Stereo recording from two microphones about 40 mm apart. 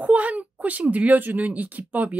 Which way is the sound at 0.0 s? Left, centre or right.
Right.